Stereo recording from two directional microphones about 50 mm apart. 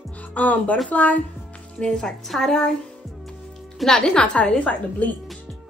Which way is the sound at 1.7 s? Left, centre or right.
Centre.